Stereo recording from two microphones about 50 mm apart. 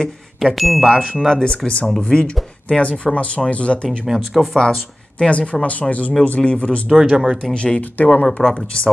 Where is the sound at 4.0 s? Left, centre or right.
Centre.